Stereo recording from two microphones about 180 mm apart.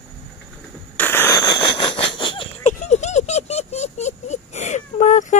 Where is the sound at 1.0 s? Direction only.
10° left (ahead or behind).